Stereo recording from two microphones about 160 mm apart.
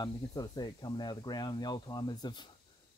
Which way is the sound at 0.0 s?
25° left (ahead or behind).